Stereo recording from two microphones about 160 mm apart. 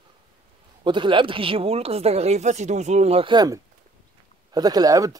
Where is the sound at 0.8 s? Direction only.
30° right (ahead or behind).